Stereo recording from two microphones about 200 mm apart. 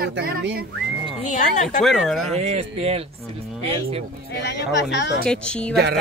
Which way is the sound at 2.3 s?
30° right (ahead or behind).